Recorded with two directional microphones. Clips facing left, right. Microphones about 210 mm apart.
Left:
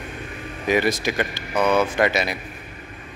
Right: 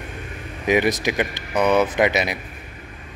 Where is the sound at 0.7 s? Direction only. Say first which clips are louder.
Right 2 dB; 20° right (ahead or behind).